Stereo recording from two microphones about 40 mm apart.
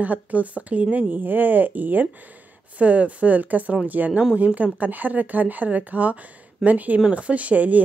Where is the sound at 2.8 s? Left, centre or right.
Right.